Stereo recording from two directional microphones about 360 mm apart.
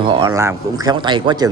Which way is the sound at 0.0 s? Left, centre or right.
Centre.